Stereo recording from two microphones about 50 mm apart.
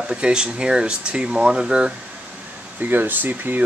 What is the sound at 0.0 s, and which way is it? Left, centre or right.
Speech, centre.